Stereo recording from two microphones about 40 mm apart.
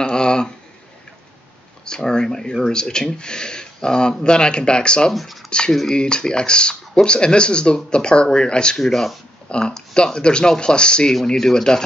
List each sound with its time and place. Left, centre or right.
0.0 s a sound: left
1.9 s speech: centre
5.1 s speech: centre
5.9 s speech: left
8.7 s speech: centre
9.5 s speech: left
11.2 s speech: centre